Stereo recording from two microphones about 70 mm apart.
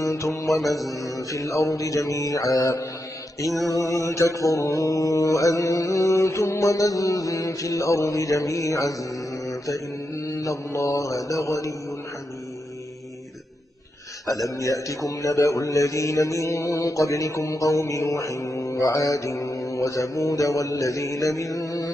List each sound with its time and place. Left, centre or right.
0.0 s mantra: left
0.5 s mantra: centre
0.9 s a man's voice: left
10.4 s a man's voice: left
14.2 s a man's voice: left